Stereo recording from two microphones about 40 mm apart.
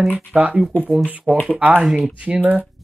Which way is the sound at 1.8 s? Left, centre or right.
Centre.